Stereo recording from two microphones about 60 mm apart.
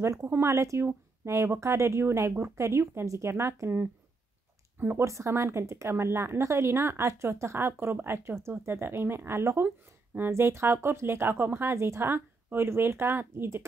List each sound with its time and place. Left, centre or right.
0.0 s speech: right
0.3 s speech: right
0.6 s speech: right
0.8 s speech: right
5.0 s speech: right